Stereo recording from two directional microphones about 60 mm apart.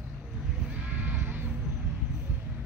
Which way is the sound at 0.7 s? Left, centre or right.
Right.